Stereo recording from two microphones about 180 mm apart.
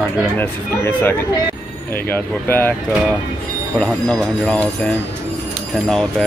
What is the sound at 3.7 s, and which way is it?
Speech, 5° left (ahead or behind).